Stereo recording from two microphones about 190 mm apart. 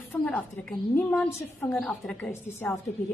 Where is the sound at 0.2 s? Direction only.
5° left (ahead or behind).